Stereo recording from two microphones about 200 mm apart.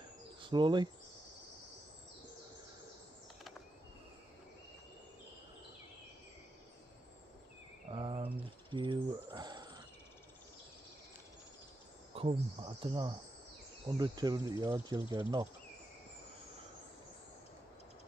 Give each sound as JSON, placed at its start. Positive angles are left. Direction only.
{"t": 0.4, "sound": "speech", "side_deg": -25}
{"t": 7.9, "sound": "a sound", "side_deg": -25}
{"t": 12.1, "sound": "speech", "side_deg": -30}